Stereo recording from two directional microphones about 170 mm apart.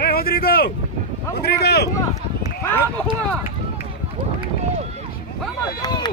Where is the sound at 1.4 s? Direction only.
70° left (ahead or behind).